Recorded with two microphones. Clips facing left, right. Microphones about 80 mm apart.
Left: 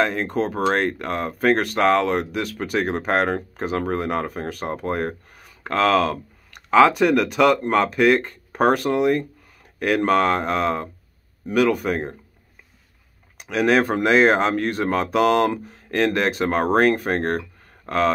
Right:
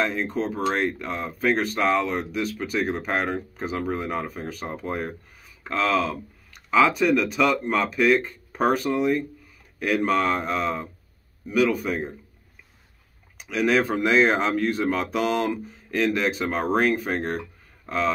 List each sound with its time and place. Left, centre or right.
0.0 s speech: left
13.4 s speech: left